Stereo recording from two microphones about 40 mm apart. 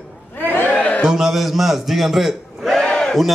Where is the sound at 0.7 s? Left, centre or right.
Left.